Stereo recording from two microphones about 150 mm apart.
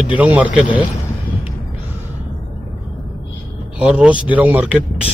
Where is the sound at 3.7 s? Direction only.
5° right (ahead or behind).